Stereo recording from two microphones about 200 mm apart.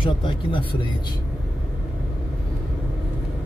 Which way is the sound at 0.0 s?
25° left (ahead or behind).